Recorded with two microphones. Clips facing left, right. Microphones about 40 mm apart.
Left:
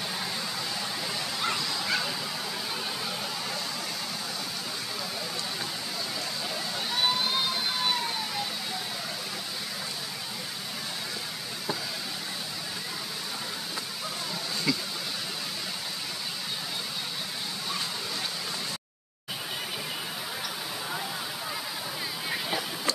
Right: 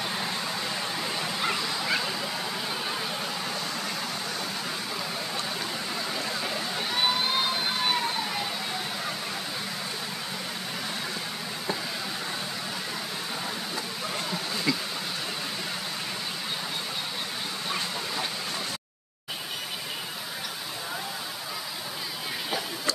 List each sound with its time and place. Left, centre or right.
1.0 s bow-wow: centre
6.9 s vehicle: centre
14.7 s a sound: centre